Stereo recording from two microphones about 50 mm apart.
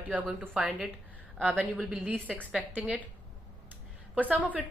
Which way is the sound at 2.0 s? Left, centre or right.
Right.